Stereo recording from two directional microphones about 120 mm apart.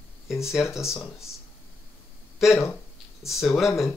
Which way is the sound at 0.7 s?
25° left (ahead or behind).